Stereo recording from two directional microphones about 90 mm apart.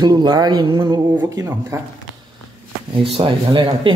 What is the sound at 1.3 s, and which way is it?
Speech, 35° right (ahead or behind).